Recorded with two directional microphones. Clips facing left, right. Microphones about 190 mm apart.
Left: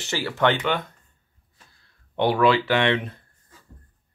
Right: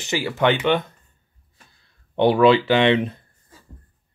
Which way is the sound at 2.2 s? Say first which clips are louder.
Right 5 dB; 25° right (ahead or behind).